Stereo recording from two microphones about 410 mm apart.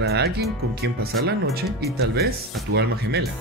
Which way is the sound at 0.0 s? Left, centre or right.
Right.